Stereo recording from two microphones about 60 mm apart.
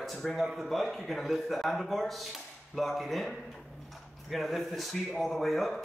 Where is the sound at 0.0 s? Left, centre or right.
Centre.